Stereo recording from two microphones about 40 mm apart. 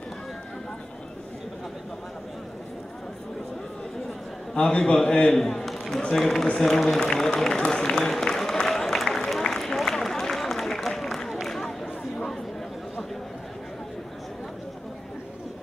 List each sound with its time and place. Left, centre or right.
4.6 s a man's voice: left
5.3 s a man's voice: centre
6.4 s speech: centre
7.6 s a sound: centre
9.4 s run: centre
11.0 s a sound: centre